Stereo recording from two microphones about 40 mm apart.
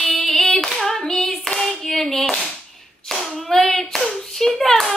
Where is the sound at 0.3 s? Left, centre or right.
Centre.